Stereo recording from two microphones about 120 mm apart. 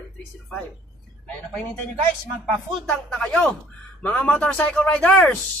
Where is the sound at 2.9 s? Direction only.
10° left (ahead or behind).